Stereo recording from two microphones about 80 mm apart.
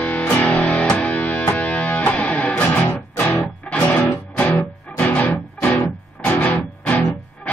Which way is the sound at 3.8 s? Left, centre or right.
Left.